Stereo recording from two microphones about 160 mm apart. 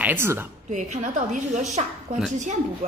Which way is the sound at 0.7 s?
50° right (ahead or behind).